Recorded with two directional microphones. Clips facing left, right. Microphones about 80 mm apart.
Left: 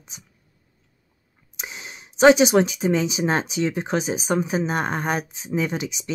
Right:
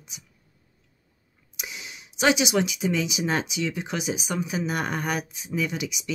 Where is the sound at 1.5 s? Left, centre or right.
Left.